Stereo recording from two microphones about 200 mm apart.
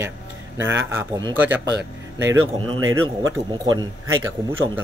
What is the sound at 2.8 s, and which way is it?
Speech, 80° right.